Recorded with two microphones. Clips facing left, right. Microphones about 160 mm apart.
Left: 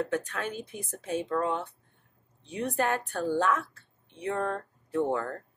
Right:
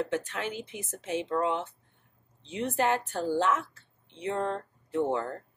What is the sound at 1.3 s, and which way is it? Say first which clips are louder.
Speech: right 2 dB; 20° right (ahead or behind).